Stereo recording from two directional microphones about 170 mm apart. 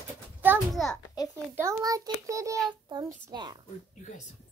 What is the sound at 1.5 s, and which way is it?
A child's voice, 15° right (ahead or behind).